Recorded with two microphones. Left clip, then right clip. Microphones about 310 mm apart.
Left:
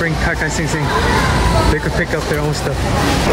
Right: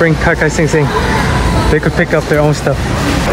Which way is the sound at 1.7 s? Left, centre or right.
Centre.